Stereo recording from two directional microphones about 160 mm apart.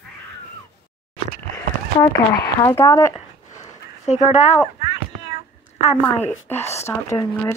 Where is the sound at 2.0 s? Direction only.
20° left (ahead or behind).